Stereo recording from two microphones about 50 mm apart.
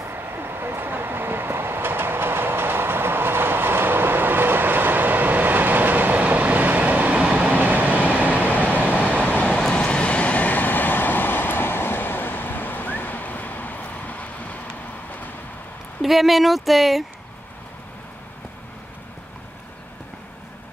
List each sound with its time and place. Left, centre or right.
0.0 s train: right
7.4 s vehicle: right
9.2 s vehicle: left
9.5 s vehicle: centre
9.8 s train: left
16.0 s speech: centre